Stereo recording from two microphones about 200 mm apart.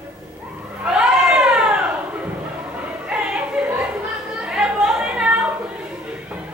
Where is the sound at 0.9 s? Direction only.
5° right (ahead or behind).